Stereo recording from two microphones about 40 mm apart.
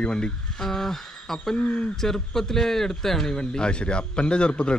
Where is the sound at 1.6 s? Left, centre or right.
Left.